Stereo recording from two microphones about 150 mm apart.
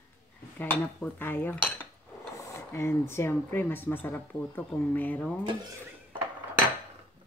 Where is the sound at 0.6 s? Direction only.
10° left (ahead or behind).